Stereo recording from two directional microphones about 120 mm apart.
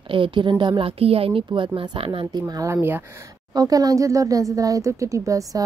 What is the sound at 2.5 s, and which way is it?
Speech, 30° right (ahead or behind).